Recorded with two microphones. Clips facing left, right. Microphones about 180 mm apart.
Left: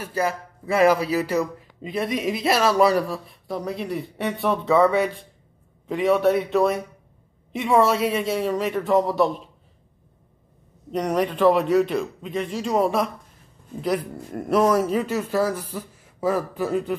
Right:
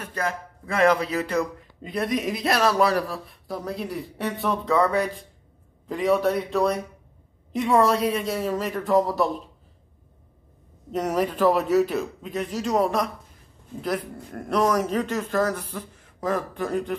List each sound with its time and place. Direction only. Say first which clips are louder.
0.1 s a man's voice: left 4 dB; 5° left (ahead or behind)
10.9 s a man's voice: left 1 dB; 5° right (ahead or behind)
14.3 s speech: left 3 dB; 5° left (ahead or behind)